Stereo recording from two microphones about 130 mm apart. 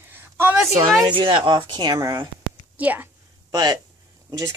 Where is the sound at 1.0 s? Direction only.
40° right (ahead or behind); by 2.2 s 25° right (ahead or behind).